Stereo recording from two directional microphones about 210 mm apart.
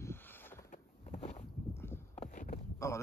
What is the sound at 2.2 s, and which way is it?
Clip-clop, 40° left (ahead or behind).